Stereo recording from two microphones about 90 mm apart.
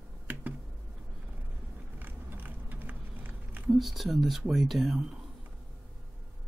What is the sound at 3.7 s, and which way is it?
Speech, centre (ahead or behind).